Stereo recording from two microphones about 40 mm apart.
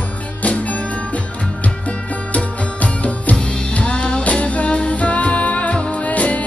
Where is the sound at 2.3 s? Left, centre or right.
Left.